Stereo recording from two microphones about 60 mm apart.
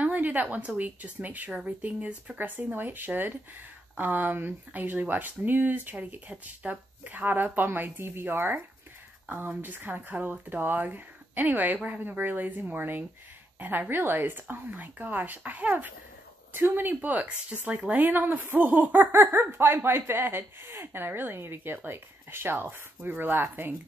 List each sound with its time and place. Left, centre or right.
0.0 s a woman's voice: right